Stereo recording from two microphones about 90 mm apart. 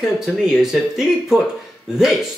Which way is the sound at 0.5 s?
5° right (ahead or behind).